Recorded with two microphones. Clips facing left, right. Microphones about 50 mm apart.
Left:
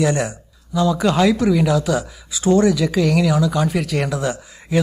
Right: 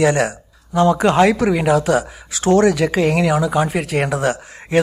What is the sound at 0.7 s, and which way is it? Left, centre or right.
Speech, right.